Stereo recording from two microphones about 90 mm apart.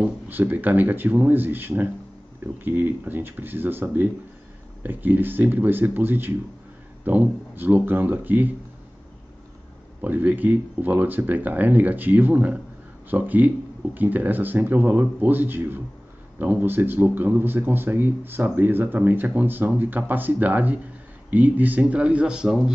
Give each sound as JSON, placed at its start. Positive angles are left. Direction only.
{"t": 0.3, "sound": "speech", "side_deg": -20}
{"t": 10.0, "sound": "speech", "side_deg": -20}